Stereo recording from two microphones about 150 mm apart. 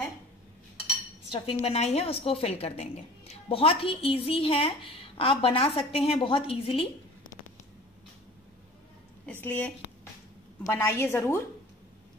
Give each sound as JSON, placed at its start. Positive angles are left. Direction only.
{"t": 1.3, "sound": "a woman's voice", "side_deg": 40}
{"t": 9.2, "sound": "a woman's voice", "side_deg": 10}